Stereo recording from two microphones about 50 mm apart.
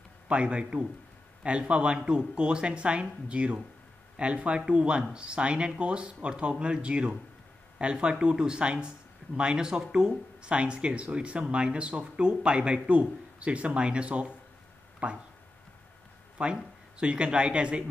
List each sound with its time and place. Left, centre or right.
0.3 s speech: right
16.4 s speech: right